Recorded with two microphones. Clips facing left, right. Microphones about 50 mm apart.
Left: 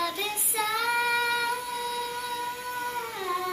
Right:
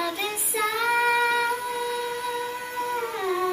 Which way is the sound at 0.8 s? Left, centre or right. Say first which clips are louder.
Right 5 dB; right.